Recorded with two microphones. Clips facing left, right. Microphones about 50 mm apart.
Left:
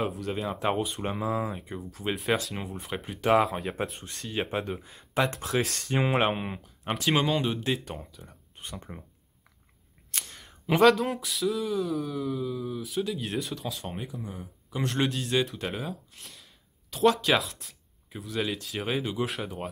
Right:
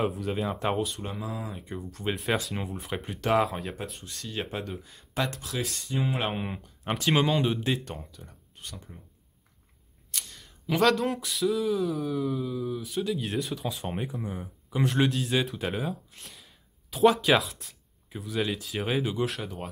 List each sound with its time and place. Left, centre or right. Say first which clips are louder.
0.0 s speech: right 2 dB; centre
0.9 s speech: left 6 dB; left
1.5 s speech: left 1 dB; centre
3.9 s speech: left 1 dB; left
4.4 s speech: left 4 dB; centre
5.3 s speech: left 7 dB; left
5.6 s speech: left 3 dB; left
6.2 s speech: left 3 dB; centre
8.5 s a sound: left 3 dB; left
10.1 s a sound: left 2 dB; left
10.8 s speech: left 3 dB; centre
14.2 s speech: right 4 dB; right
14.7 s speech: right 3 dB; centre